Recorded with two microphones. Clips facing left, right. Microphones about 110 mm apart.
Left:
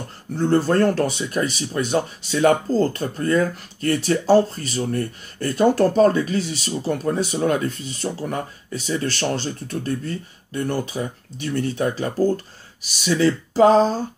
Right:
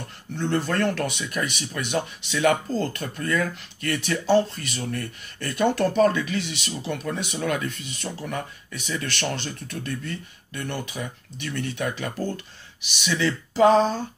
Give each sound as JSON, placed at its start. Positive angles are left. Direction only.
{"t": 0.3, "sound": "speech", "side_deg": 35}